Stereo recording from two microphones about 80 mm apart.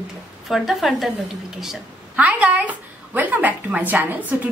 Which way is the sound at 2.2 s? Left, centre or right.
Centre.